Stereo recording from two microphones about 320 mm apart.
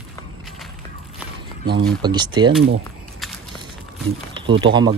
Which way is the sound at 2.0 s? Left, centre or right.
Centre.